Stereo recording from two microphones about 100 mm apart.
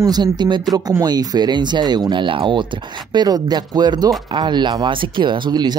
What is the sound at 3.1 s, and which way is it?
Speech, 40° right (ahead or behind).